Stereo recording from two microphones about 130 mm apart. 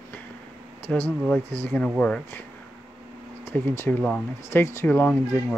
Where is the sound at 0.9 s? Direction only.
10° left (ahead or behind).